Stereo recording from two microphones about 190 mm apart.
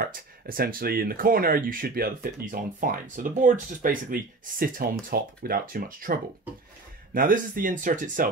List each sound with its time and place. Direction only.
0.0 s speech: 50° right (ahead or behind)
7.2 s speech: 45° right (ahead or behind)